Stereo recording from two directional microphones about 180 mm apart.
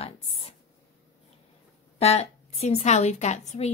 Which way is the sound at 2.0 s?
35° left (ahead or behind).